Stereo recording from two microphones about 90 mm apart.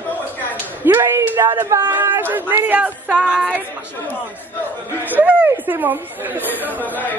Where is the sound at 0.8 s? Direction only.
25° right (ahead or behind).